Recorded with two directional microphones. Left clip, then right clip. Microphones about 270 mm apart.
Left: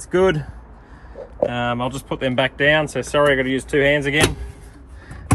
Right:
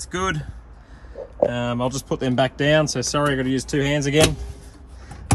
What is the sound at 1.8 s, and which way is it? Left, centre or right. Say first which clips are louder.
Speech: even; right.